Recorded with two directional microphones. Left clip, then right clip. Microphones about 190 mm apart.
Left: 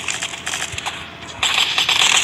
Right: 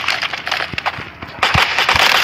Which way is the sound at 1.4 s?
Centre (ahead or behind).